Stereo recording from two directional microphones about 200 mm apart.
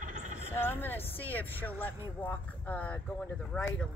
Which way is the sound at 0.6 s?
10° left (ahead or behind).